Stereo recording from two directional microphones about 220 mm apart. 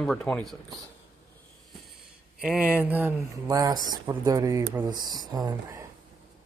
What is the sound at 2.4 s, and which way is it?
Speech, 5° right (ahead or behind).